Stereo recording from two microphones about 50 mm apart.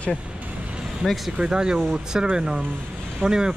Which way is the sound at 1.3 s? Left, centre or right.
Centre.